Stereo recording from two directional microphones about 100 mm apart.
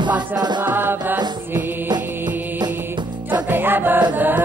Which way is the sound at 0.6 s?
20° right (ahead or behind).